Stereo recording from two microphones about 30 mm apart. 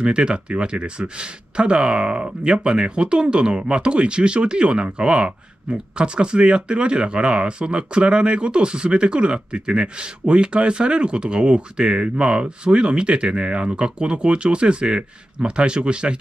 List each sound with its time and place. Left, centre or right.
0.0 s speech: right